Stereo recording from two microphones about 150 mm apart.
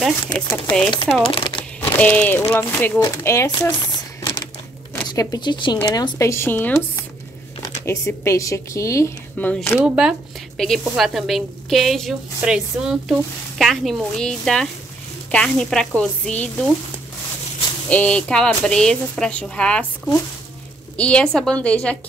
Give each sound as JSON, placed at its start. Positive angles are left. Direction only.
{"t": 0.0, "sound": "speech", "side_deg": 5}
{"t": 1.2, "sound": "speech", "side_deg": 35}
{"t": 1.6, "sound": "a sound", "side_deg": 10}
{"t": 2.5, "sound": "a woman's voice", "side_deg": 10}
{"t": 5.0, "sound": "speech", "side_deg": 25}
{"t": 6.1, "sound": "speech", "side_deg": 20}
{"t": 7.8, "sound": "a woman's voice", "side_deg": 20}
{"t": 9.8, "sound": "speech", "side_deg": -5}
{"t": 17.8, "sound": "speech", "side_deg": 10}
{"t": 20.9, "sound": "speech", "side_deg": 5}